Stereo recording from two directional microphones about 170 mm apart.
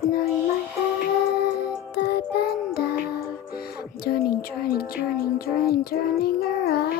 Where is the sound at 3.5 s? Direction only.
65° left (ahead or behind).